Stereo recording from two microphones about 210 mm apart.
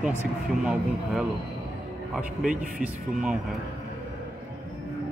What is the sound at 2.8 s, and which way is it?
Speech, 5° right (ahead or behind).